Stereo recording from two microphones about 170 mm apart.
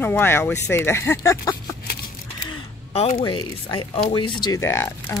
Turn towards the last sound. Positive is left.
turn(degrees=15)  # may be behind; listen again after turning